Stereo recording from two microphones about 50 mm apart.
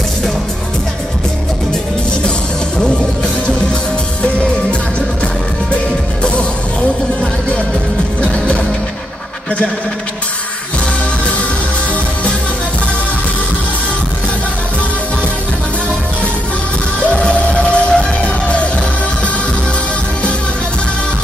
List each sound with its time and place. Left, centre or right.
4.2 s music: left
17.1 s music: left